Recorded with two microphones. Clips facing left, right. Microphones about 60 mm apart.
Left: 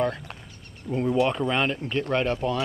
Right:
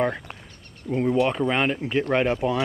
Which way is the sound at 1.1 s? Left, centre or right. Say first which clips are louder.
Even; centre.